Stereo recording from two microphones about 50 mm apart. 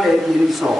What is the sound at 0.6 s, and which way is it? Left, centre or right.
Speech, centre.